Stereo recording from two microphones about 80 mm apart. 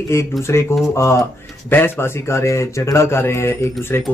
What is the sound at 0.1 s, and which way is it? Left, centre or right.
Speech, left.